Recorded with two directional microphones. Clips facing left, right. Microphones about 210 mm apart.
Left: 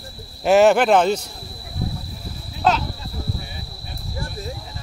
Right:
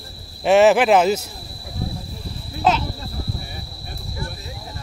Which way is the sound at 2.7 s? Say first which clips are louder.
Even; centre (ahead or behind).